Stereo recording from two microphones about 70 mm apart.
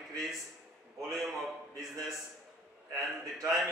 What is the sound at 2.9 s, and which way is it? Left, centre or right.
Speech, right.